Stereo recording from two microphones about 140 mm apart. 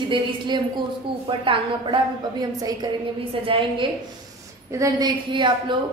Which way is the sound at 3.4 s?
40° right (ahead or behind).